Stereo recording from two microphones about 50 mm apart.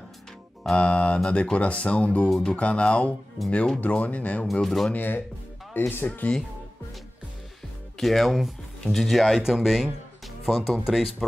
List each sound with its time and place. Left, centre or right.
0.7 s speech: left
3.8 s speech: left
4.6 s speech: centre
4.9 s speech: left
8.0 s speech: centre